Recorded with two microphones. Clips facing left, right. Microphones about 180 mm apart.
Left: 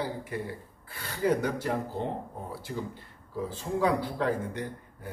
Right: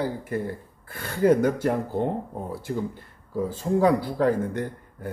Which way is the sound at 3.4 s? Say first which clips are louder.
Right 6 dB; 45° right (ahead or behind).